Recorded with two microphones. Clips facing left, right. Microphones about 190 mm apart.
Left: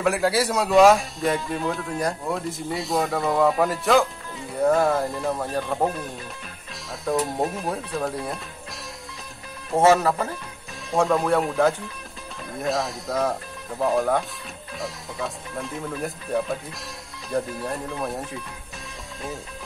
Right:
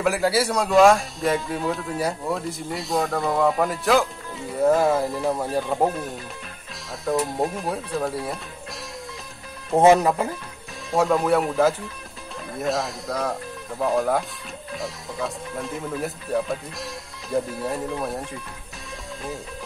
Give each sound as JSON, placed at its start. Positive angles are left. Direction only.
{"t": 0.0, "sound": "speech", "side_deg": 0}
{"t": 7.1, "sound": "speech", "side_deg": 0}
{"t": 9.8, "sound": "speech", "side_deg": -15}
{"t": 10.9, "sound": "speech", "side_deg": 0}